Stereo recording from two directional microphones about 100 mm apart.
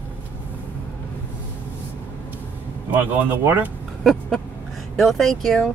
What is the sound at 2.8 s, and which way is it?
Speech, 20° right (ahead or behind).